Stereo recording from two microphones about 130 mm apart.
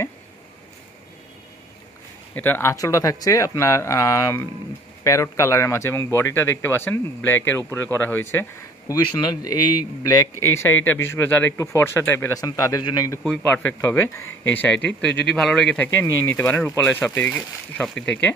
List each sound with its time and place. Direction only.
2.3 s speech: 15° left (ahead or behind)
12.4 s speech: 25° left (ahead or behind)
13.4 s speech: 15° left (ahead or behind)
15.9 s speech: 20° left (ahead or behind)